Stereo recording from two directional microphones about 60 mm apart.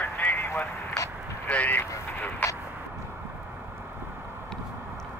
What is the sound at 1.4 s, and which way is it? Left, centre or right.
Speech, left.